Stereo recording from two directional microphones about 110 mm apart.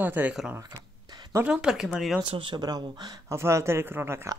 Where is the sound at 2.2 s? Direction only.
50° right (ahead or behind).